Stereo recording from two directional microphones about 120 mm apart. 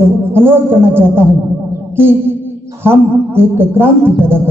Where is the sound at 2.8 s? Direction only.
20° right (ahead or behind).